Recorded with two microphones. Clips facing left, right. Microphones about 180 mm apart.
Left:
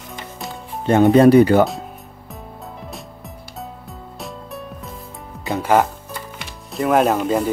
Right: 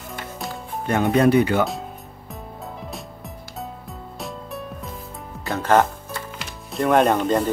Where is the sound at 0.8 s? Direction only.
30° left (ahead or behind).